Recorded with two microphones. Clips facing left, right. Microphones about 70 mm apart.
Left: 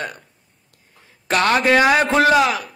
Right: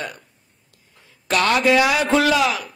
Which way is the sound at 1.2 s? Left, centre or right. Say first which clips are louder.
Left 1 dB; left.